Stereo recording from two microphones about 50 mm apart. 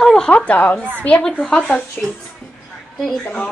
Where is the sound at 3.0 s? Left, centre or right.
Centre.